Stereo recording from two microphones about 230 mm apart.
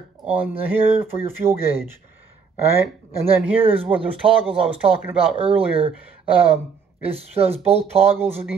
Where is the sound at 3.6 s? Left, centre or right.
Right.